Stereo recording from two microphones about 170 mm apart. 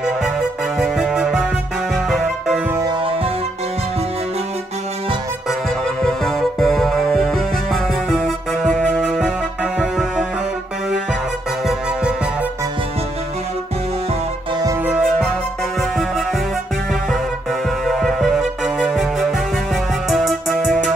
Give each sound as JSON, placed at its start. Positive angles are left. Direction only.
{"t": 0.7, "sound": "music", "side_deg": 0}
{"t": 2.7, "sound": "music", "side_deg": -20}
{"t": 6.0, "sound": "music", "side_deg": 0}
{"t": 17.8, "sound": "music", "side_deg": 0}